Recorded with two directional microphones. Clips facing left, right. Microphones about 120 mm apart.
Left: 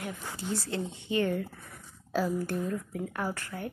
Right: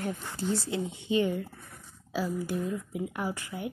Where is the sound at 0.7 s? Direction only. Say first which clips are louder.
Right 3 dB; 15° right (ahead or behind).